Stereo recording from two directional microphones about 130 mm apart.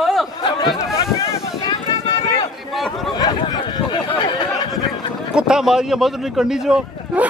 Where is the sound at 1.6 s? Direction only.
35° left (ahead or behind).